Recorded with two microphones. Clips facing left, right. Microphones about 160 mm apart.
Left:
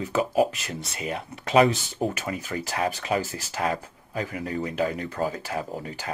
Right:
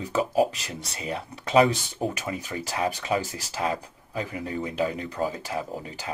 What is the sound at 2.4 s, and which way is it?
Speech, 45° left (ahead or behind).